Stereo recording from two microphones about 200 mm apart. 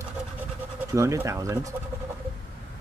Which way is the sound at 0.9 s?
15° right (ahead or behind).